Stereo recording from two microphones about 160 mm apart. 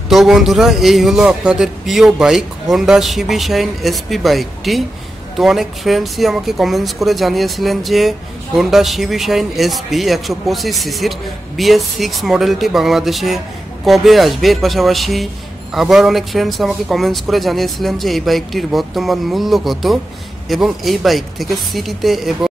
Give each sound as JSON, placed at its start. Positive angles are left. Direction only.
{"t": 0.1, "sound": "speech", "side_deg": 0}